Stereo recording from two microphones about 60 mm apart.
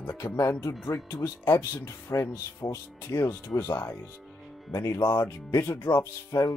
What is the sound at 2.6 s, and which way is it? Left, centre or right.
Speech, left.